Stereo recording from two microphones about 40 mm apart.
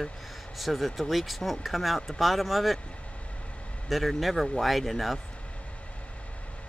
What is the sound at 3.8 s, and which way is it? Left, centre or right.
Speech, centre.